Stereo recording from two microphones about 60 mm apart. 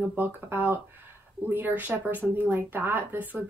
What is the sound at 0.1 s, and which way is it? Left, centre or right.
A woman's voice, right.